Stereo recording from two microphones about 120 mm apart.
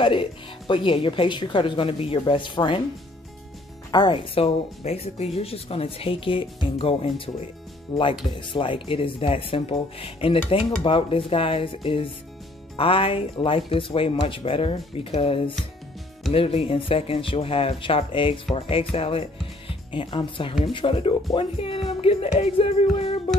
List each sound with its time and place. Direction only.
0.0 s speech: 45° left (ahead or behind)
3.9 s speech: 40° left (ahead or behind)
7.9 s speech: 35° left (ahead or behind)
8.4 s speech: 45° left (ahead or behind)